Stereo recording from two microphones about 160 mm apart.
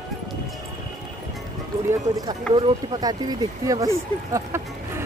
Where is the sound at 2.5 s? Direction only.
30° right (ahead or behind).